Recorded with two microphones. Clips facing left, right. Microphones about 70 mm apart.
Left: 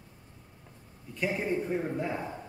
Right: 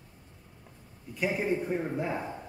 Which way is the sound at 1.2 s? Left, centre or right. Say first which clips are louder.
Right 1 dB; centre.